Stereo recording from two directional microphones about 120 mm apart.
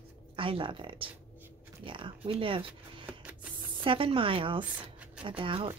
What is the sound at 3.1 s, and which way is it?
Printer, 10° right (ahead or behind).